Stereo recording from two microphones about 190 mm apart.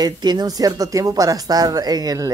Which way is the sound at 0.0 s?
20° right (ahead or behind).